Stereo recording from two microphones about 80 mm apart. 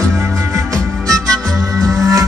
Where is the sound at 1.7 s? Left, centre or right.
Right.